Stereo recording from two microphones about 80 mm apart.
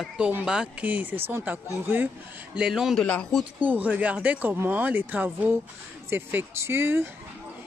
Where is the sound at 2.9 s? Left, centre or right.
Centre.